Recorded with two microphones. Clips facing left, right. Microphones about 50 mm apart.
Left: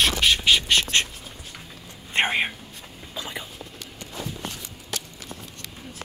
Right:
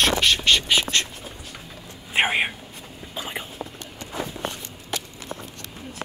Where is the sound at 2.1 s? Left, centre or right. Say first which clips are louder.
Right 1 dB; centre.